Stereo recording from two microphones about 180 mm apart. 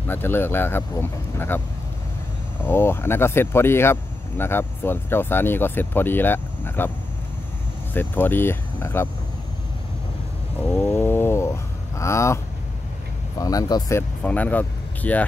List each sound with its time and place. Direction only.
0.1 s speech: 10° left (ahead or behind)
2.6 s speech: 15° left (ahead or behind)
7.9 s speech: 10° left (ahead or behind)
10.6 s a sound: 10° left (ahead or behind)
12.0 s speech: 15° left (ahead or behind)
13.4 s speech: 20° left (ahead or behind)